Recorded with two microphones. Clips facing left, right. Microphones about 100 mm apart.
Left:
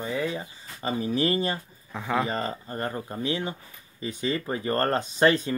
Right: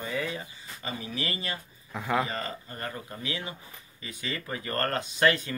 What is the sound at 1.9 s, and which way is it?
Speech, centre (ahead or behind).